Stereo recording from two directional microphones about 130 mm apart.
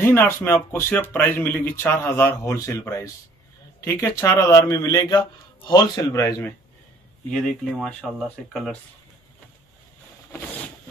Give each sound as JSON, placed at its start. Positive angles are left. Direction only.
{"t": 0.0, "sound": "speech", "side_deg": 15}
{"t": 7.2, "sound": "speech", "side_deg": 5}